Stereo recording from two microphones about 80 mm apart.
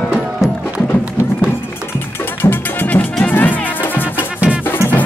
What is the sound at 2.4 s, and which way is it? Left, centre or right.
Music, left.